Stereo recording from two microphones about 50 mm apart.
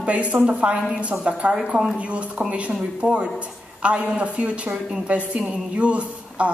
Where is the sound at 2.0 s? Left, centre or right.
Right.